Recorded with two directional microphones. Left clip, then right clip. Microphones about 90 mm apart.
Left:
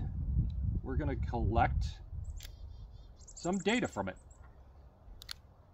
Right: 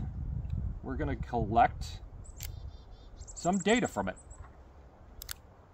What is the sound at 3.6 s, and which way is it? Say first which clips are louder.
Speech: right 4 dB; 15° right (ahead or behind).